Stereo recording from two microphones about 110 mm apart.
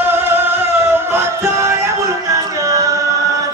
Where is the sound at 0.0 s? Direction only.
20° right (ahead or behind).